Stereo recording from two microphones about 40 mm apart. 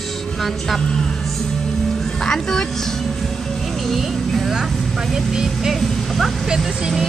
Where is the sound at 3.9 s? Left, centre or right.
Centre.